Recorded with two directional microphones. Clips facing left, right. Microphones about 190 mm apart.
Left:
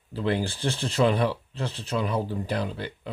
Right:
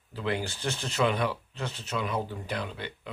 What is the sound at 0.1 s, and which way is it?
Speech, 35° left (ahead or behind).